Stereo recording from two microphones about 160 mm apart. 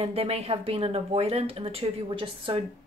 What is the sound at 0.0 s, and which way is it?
A woman's voice, 40° right (ahead or behind).